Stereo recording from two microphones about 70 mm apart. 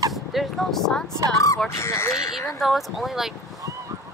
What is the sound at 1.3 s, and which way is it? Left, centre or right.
Speech, left.